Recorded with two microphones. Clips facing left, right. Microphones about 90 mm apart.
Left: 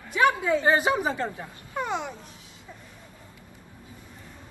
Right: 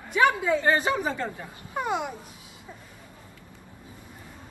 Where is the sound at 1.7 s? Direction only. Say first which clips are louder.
Right 1 dB; 10° right (ahead or behind).